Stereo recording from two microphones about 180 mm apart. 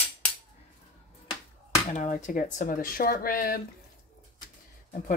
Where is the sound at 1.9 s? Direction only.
45° left (ahead or behind).